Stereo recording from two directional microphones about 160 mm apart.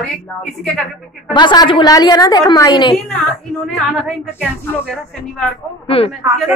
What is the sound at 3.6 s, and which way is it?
A woman's voice, centre (ahead or behind).